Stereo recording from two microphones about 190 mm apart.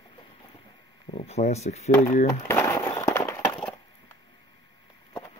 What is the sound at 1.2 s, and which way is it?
Speech, 35° left (ahead or behind).